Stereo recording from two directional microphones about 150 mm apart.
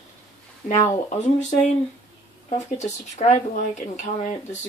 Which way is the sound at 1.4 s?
50° left (ahead or behind).